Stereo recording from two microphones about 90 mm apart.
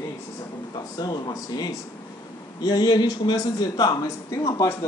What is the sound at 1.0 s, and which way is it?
A man's voice, 50° left (ahead or behind).